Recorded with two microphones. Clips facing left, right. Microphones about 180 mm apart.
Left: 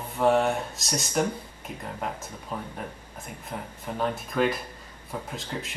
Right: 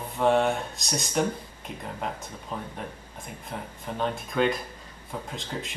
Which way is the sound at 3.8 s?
5° left (ahead or behind).